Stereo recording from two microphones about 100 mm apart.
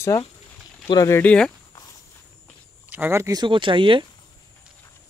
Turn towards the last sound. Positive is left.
turn(degrees=-55)  # may be behind; listen again after turning